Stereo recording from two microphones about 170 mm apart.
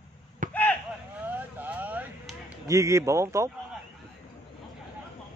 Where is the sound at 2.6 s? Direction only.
20° right (ahead or behind).